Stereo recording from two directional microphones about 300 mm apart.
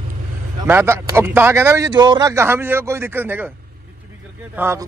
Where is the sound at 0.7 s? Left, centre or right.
Centre.